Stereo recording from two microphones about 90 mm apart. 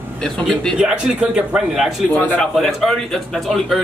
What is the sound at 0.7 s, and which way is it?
Speech, 10° right (ahead or behind).